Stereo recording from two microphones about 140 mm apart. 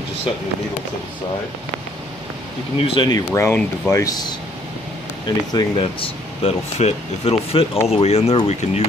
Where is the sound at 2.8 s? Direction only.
35° left (ahead or behind).